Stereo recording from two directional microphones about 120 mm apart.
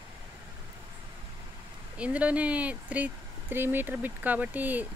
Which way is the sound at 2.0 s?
10° right (ahead or behind).